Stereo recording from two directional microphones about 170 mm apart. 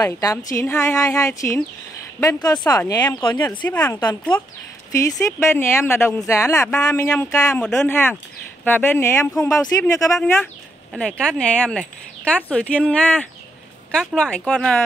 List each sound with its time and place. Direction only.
0.0 s a woman's voice: 20° left (ahead or behind)
3.6 s a woman's voice: 10° left (ahead or behind)
10.1 s speech: 10° left (ahead or behind)